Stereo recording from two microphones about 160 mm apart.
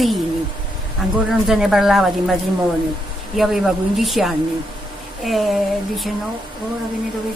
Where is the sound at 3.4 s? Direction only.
Centre (ahead or behind).